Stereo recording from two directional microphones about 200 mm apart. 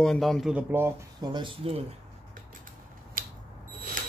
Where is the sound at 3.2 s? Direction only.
45° right (ahead or behind).